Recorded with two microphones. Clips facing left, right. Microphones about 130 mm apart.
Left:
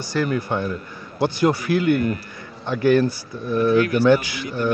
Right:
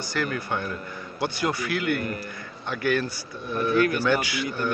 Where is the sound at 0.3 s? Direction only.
30° left (ahead or behind).